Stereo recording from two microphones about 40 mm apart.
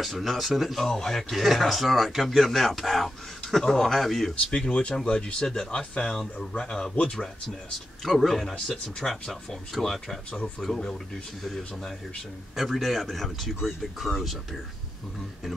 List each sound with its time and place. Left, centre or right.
0.0 s speech: centre
0.7 s speech: centre
1.3 s speech: centre
4.5 s speech: left
6.6 s speech: centre
12.5 s speech: centre